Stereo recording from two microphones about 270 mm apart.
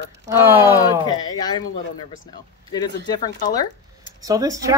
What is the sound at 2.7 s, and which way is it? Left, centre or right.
Speech, centre.